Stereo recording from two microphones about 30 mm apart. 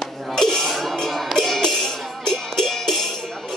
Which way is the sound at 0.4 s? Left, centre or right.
Centre.